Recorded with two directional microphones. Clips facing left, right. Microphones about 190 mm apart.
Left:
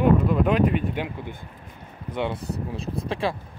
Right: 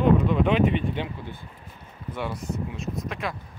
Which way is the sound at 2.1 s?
25° left (ahead or behind).